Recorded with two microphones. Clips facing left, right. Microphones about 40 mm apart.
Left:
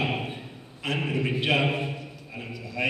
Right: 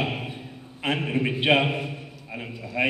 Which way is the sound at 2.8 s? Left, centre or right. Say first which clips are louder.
Right 3 dB; right.